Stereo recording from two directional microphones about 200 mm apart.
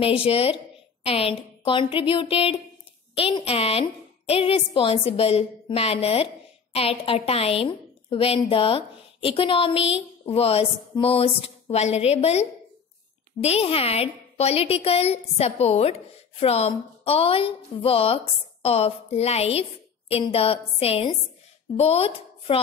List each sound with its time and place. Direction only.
0.0 s a woman's voice: 30° left (ahead or behind)